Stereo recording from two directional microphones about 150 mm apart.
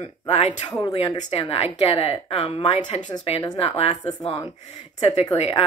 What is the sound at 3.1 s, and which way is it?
Speech, 25° left (ahead or behind).